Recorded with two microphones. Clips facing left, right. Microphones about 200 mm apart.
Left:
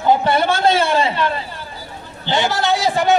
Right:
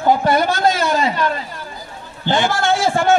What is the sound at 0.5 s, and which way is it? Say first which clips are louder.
Speech: left 1 dB; 30° left (ahead or behind).